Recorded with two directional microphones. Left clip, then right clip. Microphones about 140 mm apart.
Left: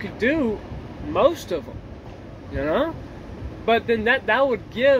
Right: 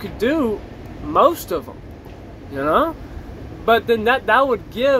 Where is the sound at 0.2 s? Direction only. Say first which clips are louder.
Right 3 dB; 15° left (ahead or behind).